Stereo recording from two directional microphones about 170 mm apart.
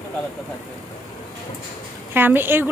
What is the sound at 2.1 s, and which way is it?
Speech, 10° right (ahead or behind).